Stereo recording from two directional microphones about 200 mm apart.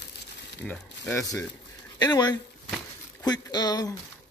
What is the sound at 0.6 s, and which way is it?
Speech, 10° left (ahead or behind).